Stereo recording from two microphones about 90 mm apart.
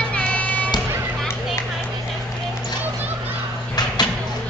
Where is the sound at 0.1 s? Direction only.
15° left (ahead or behind).